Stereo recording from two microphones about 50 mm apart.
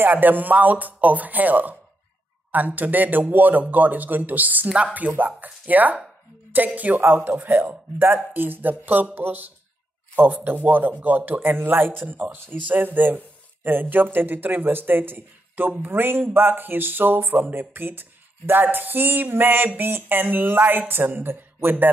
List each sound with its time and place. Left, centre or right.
0.0 s speech: right
7.0 s a man's voice: right